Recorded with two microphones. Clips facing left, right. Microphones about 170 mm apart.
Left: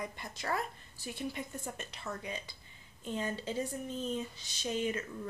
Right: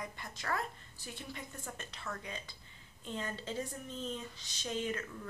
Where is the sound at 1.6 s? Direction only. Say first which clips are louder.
Left 3 dB; 20° left (ahead or behind).